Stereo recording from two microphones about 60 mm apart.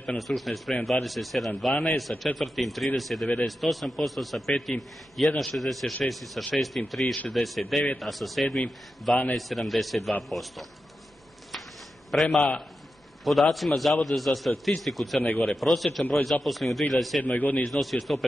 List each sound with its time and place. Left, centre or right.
0.4 s speech: centre
12.1 s speech: centre
17.2 s speech: left
17.6 s speech: centre